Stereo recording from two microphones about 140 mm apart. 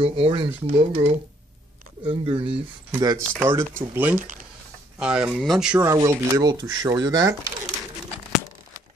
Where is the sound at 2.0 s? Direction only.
35° right (ahead or behind).